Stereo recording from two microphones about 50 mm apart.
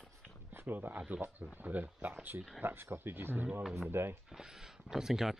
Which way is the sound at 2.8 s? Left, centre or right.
Right.